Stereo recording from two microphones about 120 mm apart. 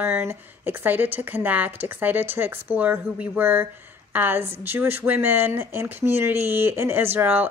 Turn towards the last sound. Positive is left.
turn(degrees=-15)  # may be behind; listen again after turning